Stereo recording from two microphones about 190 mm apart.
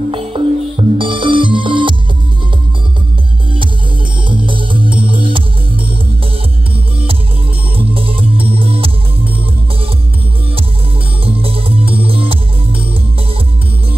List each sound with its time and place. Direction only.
0.1 s music: 30° right (ahead or behind)
4.3 s music: 25° right (ahead or behind)
7.7 s music: 30° right (ahead or behind)
11.2 s music: 30° right (ahead or behind)